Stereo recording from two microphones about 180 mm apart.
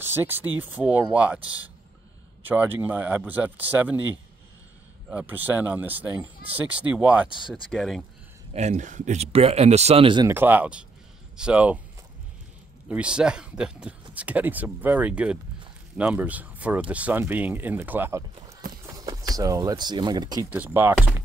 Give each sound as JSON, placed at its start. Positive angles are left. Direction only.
{"t": 0.0, "sound": "speech", "side_deg": -10}
{"t": 5.1, "sound": "speech", "side_deg": -10}
{"t": 8.5, "sound": "speech", "side_deg": -40}
{"t": 10.2, "sound": "speech", "side_deg": -10}
{"t": 12.8, "sound": "speech", "side_deg": -5}
{"t": 20.4, "sound": "speech", "side_deg": -10}